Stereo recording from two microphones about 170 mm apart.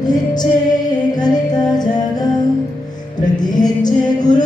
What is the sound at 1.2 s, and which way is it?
Music, 25° left (ahead or behind).